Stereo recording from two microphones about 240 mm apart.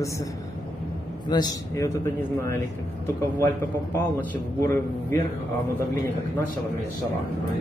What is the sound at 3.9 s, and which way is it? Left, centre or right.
Speech, centre.